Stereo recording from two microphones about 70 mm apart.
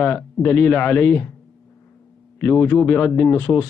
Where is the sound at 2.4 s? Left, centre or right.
Left.